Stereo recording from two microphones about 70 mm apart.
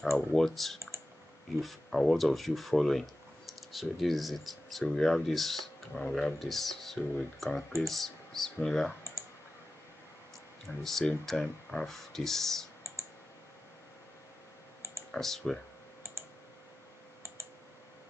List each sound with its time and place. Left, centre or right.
0.3 s speech: centre
10.8 s speech: centre
15.0 s speech: centre